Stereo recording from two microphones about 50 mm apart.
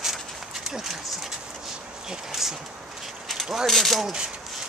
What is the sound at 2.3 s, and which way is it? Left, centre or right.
Speech, centre.